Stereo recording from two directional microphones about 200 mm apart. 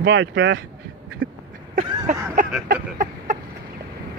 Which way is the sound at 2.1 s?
40° right (ahead or behind).